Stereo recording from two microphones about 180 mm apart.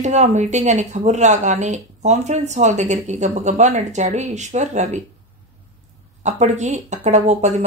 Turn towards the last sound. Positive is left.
turn(degrees=-40)  # may be behind; listen again after turning